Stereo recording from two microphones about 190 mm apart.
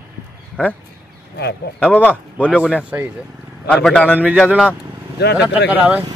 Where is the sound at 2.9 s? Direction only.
10° right (ahead or behind).